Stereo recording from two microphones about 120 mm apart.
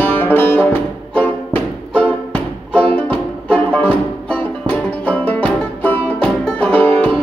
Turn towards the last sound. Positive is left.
turn(degrees=10)  # may be behind; listen again after turning